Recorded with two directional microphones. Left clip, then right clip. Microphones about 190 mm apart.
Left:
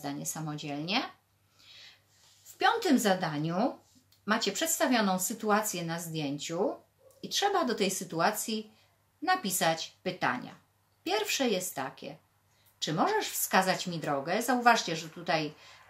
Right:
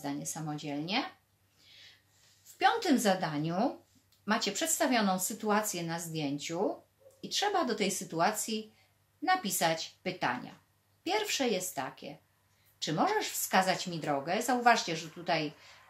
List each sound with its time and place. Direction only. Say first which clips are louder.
0.0 s speech: left 1 dB; 20° left (ahead or behind)
2.6 s a woman's voice: left 1 dB; 10° left (ahead or behind)